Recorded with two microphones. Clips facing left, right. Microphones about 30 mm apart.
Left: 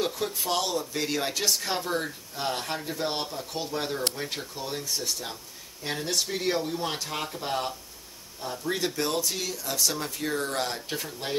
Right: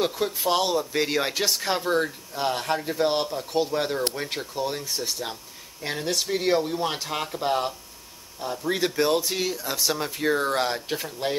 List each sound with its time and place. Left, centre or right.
0.0 s speech: centre
8.7 s speech: centre